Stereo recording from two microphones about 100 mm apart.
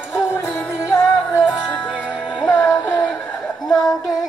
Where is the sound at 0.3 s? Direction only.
25° left (ahead or behind).